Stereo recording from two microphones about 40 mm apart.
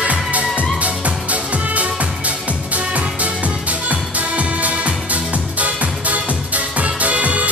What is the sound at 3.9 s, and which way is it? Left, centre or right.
Music, right.